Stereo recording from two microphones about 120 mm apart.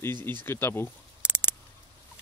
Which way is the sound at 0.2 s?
15° left (ahead or behind).